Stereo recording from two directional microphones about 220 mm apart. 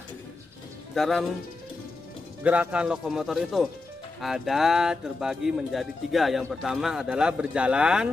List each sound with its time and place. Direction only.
0.9 s speech: centre (ahead or behind)
2.4 s speech: 5° right (ahead or behind)